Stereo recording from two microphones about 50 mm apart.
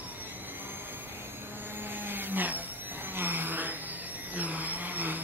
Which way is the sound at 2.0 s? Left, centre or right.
Right.